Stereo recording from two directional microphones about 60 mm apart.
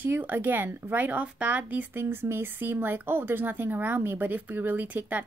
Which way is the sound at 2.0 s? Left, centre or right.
Right.